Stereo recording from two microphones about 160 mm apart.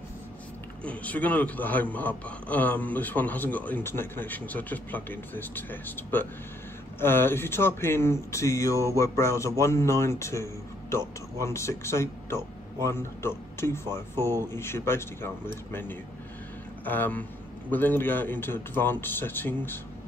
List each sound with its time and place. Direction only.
0.8 s speech: 10° left (ahead or behind)